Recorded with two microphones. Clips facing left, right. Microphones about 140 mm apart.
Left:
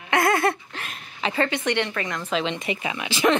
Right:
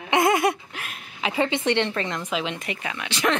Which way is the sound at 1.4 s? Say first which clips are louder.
Right 2 dB; 25° right (ahead or behind).